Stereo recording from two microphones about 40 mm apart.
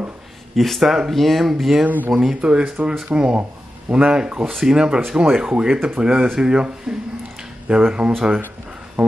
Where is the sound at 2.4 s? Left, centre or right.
Right.